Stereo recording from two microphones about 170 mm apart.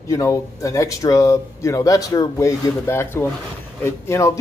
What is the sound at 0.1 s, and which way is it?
Speech, 20° left (ahead or behind).